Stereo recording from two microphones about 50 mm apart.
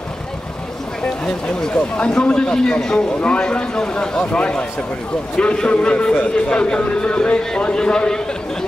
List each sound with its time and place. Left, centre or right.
1.2 s a man's voice: centre